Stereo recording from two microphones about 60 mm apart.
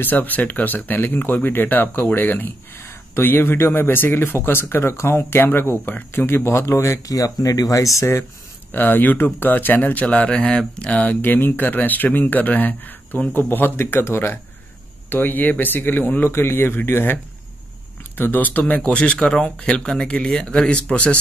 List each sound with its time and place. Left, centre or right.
0.0 s speech: left
6.6 s speech: left
7.1 s speech: left
8.7 s speech: left